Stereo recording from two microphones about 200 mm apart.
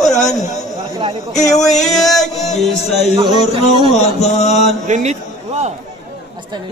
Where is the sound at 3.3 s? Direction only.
30° left (ahead or behind).